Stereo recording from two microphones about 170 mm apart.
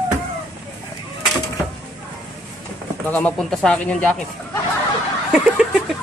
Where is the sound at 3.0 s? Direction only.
10° left (ahead or behind).